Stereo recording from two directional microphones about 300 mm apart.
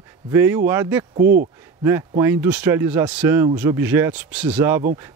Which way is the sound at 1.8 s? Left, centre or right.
Centre.